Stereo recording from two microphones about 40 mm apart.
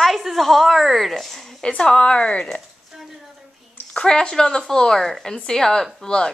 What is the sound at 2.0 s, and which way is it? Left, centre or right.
Speech, left.